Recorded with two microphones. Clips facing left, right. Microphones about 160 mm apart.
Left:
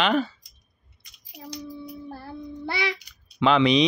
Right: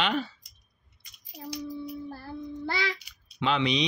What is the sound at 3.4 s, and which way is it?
Speech, 90° left.